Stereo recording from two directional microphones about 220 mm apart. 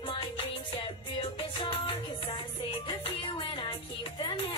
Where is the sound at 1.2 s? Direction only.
25° left (ahead or behind).